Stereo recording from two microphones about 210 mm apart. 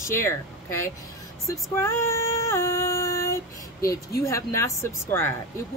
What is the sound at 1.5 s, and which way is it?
Female singing, 10° left (ahead or behind).